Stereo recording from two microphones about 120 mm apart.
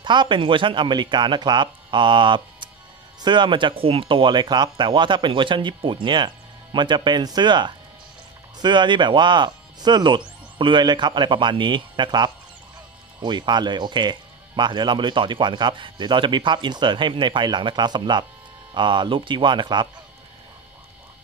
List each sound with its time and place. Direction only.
0.0 s speech: 40° right (ahead or behind)